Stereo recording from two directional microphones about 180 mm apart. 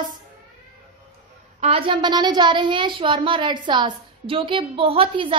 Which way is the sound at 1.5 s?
35° right (ahead or behind).